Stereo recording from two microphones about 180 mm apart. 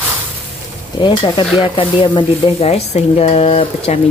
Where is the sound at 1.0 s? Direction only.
25° left (ahead or behind).